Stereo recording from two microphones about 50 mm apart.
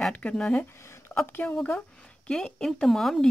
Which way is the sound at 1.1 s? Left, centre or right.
Left.